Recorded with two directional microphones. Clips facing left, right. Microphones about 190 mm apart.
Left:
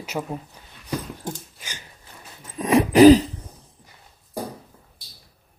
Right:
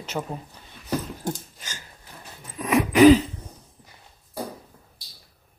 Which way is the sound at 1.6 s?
15° left (ahead or behind).